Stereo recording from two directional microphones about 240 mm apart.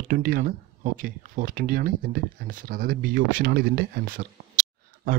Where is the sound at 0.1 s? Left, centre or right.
Right.